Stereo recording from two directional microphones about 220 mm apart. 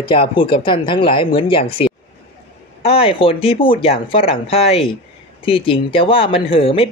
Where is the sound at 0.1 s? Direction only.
25° left (ahead or behind).